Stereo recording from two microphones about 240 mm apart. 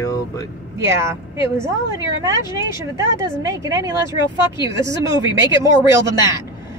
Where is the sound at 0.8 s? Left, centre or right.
Centre.